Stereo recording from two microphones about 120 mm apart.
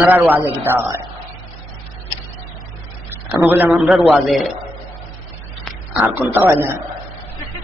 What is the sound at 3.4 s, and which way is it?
Speech, 15° right (ahead or behind).